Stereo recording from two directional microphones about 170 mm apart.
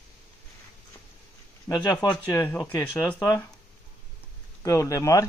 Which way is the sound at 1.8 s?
25° left (ahead or behind).